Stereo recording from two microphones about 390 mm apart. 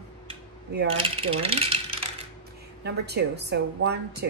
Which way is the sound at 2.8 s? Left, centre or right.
Right.